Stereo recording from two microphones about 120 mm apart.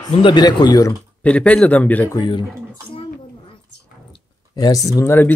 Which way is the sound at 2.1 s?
40° left (ahead or behind).